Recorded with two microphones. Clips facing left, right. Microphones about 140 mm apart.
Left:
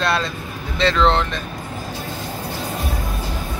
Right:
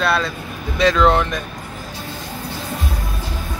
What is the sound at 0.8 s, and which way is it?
Speech, 15° right (ahead or behind).